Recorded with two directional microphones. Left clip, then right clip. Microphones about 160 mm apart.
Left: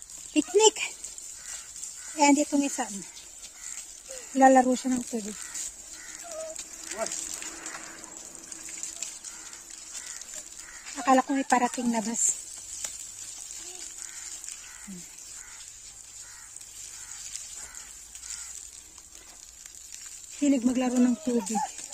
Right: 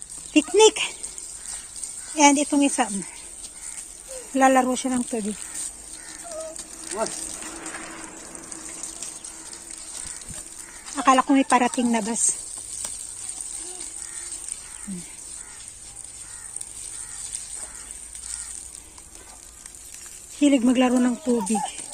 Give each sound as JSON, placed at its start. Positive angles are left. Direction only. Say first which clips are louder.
{"t": 0.3, "sound": "speech", "louder": "right 5 dB", "side_deg": 0}
{"t": 2.1, "sound": "speech", "louder": "right 5 dB", "side_deg": 0}
{"t": 4.3, "sound": "speech", "louder": "right 1 dB", "side_deg": 0}
{"t": 6.2, "sound": "a sound", "louder": "right 3 dB", "side_deg": 10}
{"t": 7.2, "sound": "livestock", "louder": "right 2 dB", "side_deg": -45}
{"t": 8.6, "sound": "water", "louder": "left 1 dB", "side_deg": 25}
{"t": 11.0, "sound": "speech", "louder": "right 6 dB", "side_deg": 0}
{"t": 17.2, "sound": "a sound", "louder": "right 3 dB", "side_deg": 0}
{"t": 20.4, "sound": "speech", "louder": "right 7 dB", "side_deg": 0}